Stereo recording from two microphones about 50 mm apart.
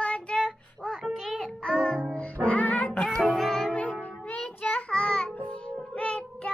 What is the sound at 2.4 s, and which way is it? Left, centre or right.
Music, left.